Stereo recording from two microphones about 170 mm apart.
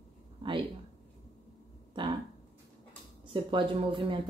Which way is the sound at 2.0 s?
30° right (ahead or behind).